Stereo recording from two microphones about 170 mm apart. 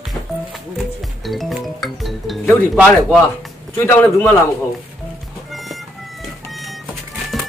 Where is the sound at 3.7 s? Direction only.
15° left (ahead or behind).